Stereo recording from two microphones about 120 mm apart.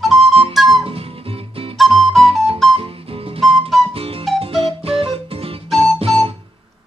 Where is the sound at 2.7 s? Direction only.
50° right (ahead or behind).